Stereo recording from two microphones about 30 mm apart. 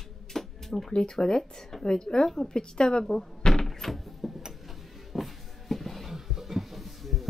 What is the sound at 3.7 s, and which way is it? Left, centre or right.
Door, centre.